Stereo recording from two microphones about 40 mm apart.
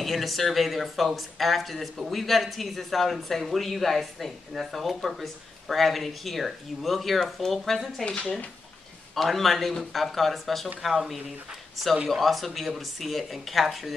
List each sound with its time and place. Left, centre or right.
0.0 s speech: centre
8.0 s speech: left
9.1 s speech: centre